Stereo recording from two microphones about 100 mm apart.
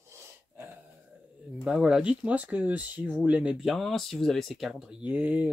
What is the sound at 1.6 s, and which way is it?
Speech, 5° right (ahead or behind).